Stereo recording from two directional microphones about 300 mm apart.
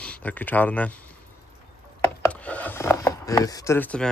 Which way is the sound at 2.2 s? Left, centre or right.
Centre.